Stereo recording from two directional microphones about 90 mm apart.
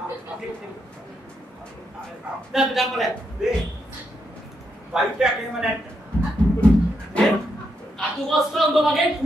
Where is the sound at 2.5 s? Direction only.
5° right (ahead or behind).